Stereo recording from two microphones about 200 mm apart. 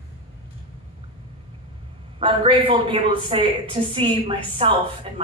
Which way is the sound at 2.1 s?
25° right (ahead or behind).